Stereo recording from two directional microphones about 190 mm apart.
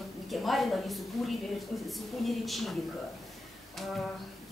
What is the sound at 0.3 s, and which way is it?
A woman's voice, centre (ahead or behind).